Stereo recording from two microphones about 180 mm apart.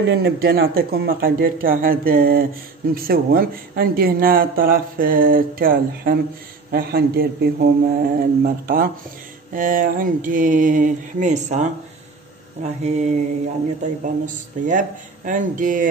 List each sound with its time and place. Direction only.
0.0 s speech: 60° right (ahead or behind); by 11.7 s 40° right (ahead or behind)
12.6 s mantra: 40° right (ahead or behind)
14.0 s speech: 45° right (ahead or behind)